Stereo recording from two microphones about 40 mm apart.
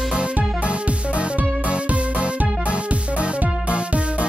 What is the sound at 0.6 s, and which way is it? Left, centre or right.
Music, right.